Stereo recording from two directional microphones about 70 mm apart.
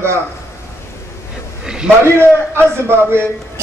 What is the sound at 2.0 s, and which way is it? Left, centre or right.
A man's voice, right.